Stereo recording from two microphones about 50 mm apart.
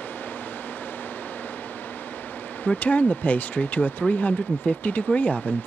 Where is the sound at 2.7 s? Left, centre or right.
Left.